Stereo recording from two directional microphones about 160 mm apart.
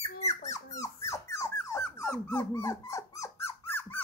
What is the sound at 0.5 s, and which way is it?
Dog, 20° left (ahead or behind).